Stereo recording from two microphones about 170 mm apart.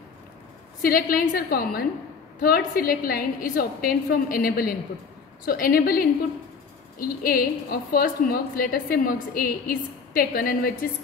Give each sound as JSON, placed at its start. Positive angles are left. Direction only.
{"t": 0.8, "sound": "a woman's voice", "side_deg": 60}